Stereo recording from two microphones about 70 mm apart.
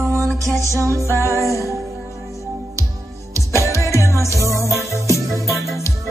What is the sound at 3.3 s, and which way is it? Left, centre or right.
Music, left.